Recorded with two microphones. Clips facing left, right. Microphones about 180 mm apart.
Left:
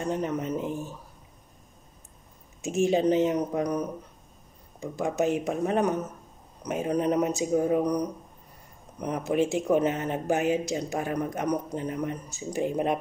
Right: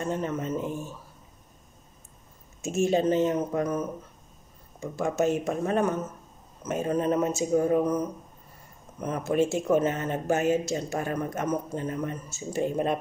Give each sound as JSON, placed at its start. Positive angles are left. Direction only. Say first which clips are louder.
{"t": 0.0, "sound": "speech", "louder": "left 1 dB", "side_deg": 15}
{"t": 2.6, "sound": "speech", "louder": "left 1 dB", "side_deg": 15}